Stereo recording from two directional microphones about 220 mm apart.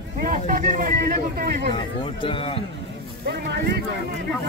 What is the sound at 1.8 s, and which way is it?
Speech, 25° left (ahead or behind).